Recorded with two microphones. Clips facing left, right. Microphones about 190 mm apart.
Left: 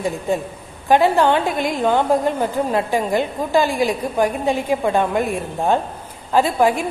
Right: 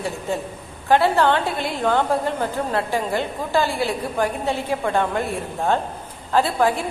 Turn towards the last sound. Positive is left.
turn(degrees=15)  # may be behind; listen again after turning